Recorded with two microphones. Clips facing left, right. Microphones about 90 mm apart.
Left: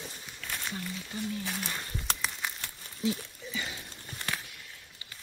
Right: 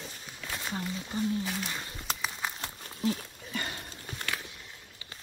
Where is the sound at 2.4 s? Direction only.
25° right (ahead or behind).